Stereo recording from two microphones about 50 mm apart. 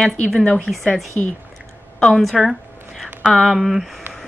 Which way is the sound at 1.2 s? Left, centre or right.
Centre.